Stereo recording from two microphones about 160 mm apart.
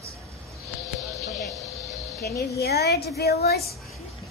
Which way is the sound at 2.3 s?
85° left.